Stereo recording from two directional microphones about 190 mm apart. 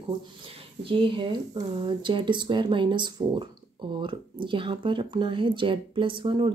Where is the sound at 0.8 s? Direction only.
25° right (ahead or behind).